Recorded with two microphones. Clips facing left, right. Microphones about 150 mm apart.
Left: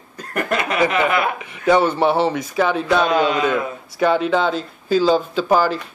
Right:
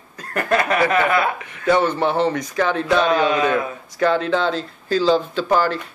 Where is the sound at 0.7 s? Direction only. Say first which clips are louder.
Left 2 dB; 20° left (ahead or behind).